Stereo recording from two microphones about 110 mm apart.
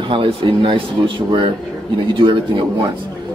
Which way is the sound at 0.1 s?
50° right (ahead or behind).